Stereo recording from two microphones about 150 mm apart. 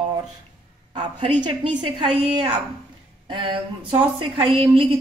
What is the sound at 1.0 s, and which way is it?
Speech, 50° right (ahead or behind).